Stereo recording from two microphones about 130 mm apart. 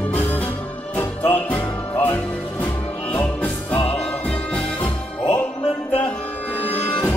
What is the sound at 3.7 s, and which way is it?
Music, 45° left (ahead or behind).